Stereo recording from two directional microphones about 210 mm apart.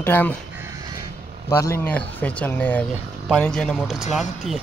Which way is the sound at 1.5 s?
10° left (ahead or behind).